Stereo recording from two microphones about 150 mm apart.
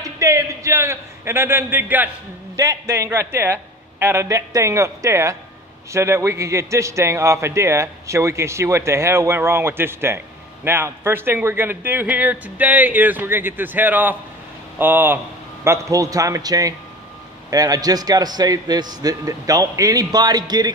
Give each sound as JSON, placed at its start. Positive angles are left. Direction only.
{"t": 0.0, "sound": "a man's voice", "side_deg": -20}